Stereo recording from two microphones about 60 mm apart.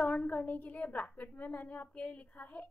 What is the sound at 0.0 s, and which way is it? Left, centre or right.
Speech, left.